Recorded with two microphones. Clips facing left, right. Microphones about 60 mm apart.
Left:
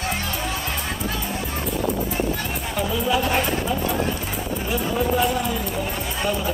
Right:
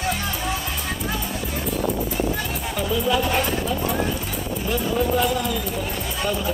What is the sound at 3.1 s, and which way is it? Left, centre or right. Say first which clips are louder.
Speech: even; centre.